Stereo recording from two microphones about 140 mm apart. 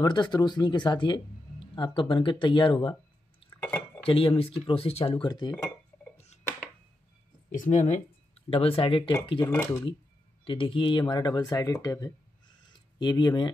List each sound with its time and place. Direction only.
0.0 s speech: 30° left (ahead or behind)
3.5 s cutlery: 15° left (ahead or behind)
4.0 s speech: 40° left (ahead or behind)
6.1 s a sound: 55° left (ahead or behind)
7.5 s speech: 65° left (ahead or behind); by 9.5 s 35° left (ahead or behind)
9.5 s speech: 20° left (ahead or behind)
10.4 s speech: 40° left (ahead or behind)